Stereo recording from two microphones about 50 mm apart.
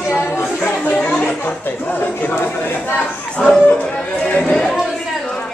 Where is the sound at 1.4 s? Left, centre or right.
Left.